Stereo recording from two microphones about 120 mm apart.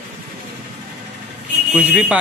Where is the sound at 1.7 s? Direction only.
15° right (ahead or behind).